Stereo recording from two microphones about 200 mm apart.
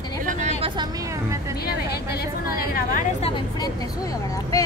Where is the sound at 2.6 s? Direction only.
45° left (ahead or behind).